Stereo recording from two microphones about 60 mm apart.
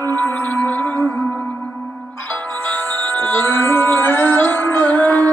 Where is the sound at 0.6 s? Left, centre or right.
Left.